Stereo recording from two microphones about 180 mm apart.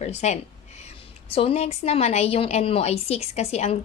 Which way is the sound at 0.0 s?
40° left (ahead or behind).